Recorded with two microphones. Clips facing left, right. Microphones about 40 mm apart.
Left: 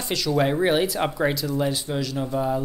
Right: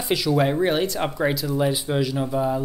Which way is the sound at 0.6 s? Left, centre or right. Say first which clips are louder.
Even; centre.